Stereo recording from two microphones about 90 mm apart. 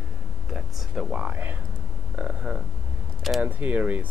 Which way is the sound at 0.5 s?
5° right (ahead or behind).